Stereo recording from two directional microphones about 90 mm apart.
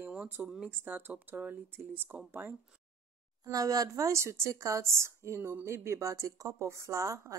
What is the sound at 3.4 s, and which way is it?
A woman's voice, 45° right (ahead or behind).